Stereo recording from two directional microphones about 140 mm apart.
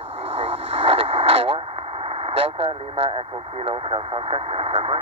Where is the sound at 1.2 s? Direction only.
45° right (ahead or behind).